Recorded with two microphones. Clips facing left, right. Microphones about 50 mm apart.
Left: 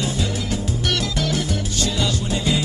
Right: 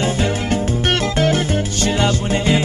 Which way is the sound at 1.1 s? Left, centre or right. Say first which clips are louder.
Right 6 dB; right.